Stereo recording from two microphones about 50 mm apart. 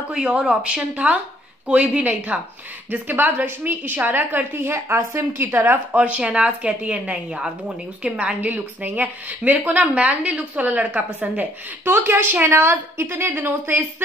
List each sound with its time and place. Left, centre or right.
0.1 s speech: centre
1.7 s a woman's voice: right
5.9 s a woman's voice: right
8.4 s a woman's voice: right
12.5 s a woman's voice: right